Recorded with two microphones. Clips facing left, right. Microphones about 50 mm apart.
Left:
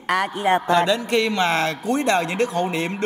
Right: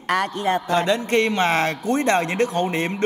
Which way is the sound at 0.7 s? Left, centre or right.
Right.